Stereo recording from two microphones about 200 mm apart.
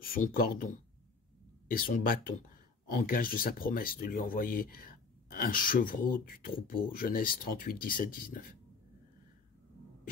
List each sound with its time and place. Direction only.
0.0 s speech: 45° left (ahead or behind)